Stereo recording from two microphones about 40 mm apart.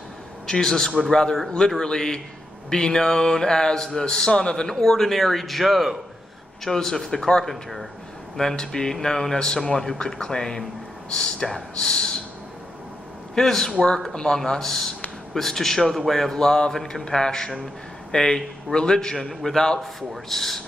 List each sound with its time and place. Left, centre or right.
0.5 s a man's voice: centre
6.6 s speech: centre
8.4 s a man's voice: centre
13.3 s a man's voice: centre
13.7 s a man's voice: left
19.1 s a man's voice: centre